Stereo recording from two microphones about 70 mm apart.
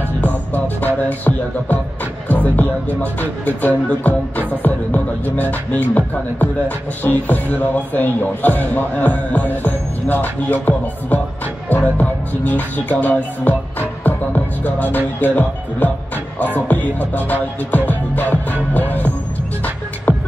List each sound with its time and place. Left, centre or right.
0.2 s music: left
11.7 s music: left